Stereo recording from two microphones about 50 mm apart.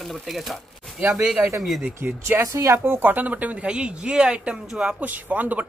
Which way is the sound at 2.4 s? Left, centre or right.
Right.